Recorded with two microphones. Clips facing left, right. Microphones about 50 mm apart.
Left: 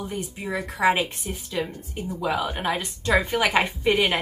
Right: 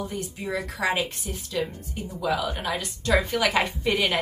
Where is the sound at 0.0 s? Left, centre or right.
Centre.